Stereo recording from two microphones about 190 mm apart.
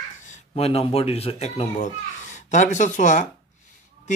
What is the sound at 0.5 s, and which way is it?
Speech, 30° left (ahead or behind).